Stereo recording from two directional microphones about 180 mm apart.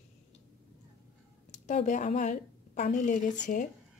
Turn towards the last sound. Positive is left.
turn(degrees=45)  # may be behind; listen again after turning